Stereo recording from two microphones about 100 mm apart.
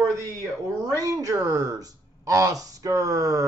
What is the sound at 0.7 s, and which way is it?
Speech, 35° right (ahead or behind).